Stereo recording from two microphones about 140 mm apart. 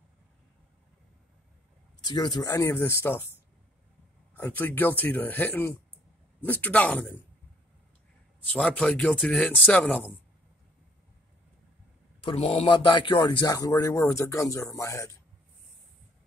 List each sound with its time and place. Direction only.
2.0 s speech: 30° left (ahead or behind)
2.5 s speech: 15° left (ahead or behind)
4.4 s speech: 15° left (ahead or behind)
8.5 s speech: 10° left (ahead or behind)
12.2 s a man's voice: 45° left (ahead or behind); by 15.1 s 20° left (ahead or behind)